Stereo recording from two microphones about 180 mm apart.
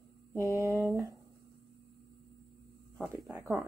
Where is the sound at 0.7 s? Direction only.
Centre (ahead or behind).